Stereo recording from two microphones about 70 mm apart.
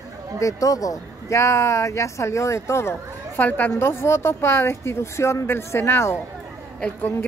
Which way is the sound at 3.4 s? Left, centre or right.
Left.